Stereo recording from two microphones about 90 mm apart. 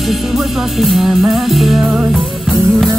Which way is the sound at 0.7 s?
Centre (ahead or behind).